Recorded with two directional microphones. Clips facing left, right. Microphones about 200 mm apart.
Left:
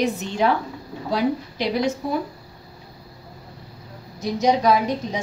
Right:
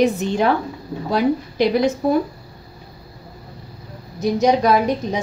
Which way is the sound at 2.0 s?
50° right (ahead or behind).